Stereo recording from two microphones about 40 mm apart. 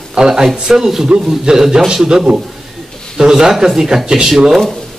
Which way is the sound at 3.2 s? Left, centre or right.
Centre.